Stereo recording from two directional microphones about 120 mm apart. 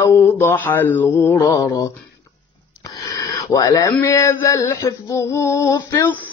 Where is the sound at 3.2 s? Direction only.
30° left (ahead or behind).